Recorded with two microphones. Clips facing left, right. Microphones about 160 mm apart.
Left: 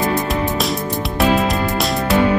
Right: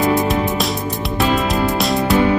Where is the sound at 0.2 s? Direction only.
Centre (ahead or behind).